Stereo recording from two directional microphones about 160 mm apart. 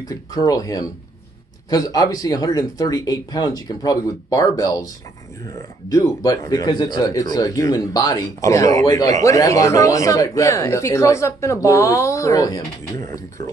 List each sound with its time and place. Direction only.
0.1 s speech: 25° left (ahead or behind)